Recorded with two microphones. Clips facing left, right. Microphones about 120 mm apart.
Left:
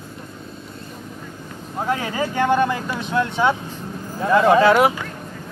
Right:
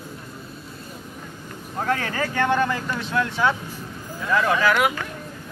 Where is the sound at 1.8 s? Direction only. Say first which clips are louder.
Left 2 dB; 15° left (ahead or behind); by 4.9 s 30° left (ahead or behind).